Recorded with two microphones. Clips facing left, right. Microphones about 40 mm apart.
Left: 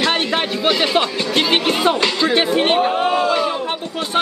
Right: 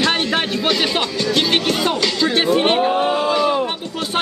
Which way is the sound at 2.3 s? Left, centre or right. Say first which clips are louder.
Right 1 dB; centre.